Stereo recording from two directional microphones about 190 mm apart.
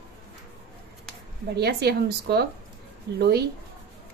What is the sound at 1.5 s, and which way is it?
A woman's voice, 60° right (ahead or behind).